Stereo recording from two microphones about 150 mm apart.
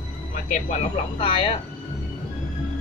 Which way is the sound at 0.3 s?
50° left (ahead or behind).